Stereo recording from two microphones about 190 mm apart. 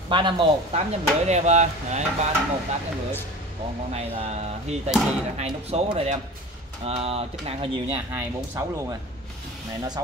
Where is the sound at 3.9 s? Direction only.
30° right (ahead or behind).